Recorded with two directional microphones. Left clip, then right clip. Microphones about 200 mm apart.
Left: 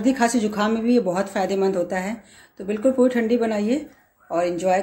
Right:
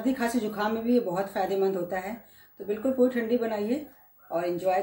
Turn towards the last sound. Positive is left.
turn(degrees=35)  # may be behind; listen again after turning